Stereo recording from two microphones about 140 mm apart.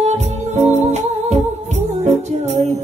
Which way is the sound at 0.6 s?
55° right (ahead or behind).